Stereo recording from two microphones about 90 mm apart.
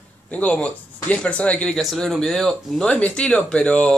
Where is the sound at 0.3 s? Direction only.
15° left (ahead or behind).